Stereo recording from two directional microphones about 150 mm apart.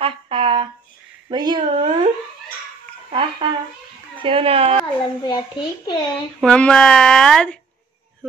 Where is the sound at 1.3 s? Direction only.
30° right (ahead or behind).